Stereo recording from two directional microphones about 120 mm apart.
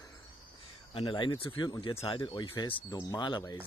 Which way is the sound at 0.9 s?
40° left (ahead or behind).